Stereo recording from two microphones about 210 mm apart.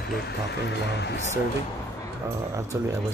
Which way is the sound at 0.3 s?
50° left (ahead or behind).